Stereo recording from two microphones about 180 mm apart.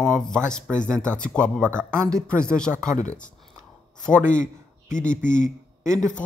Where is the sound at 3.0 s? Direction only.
45° left (ahead or behind).